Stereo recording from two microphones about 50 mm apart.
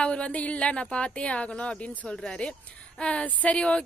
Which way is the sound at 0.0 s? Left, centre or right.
Left.